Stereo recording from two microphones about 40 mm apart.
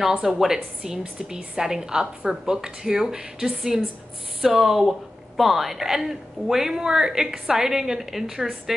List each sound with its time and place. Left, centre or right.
0.2 s a woman's voice: centre